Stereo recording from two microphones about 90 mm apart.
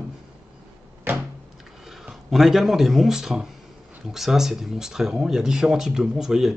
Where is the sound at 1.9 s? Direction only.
Centre (ahead or behind).